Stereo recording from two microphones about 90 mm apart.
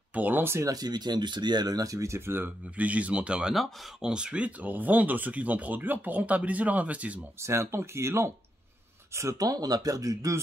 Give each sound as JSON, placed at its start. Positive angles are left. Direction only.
{"t": 0.1, "sound": "speech", "side_deg": -20}
{"t": 0.7, "sound": "speech", "side_deg": -45}
{"t": 7.3, "sound": "speech", "side_deg": -30}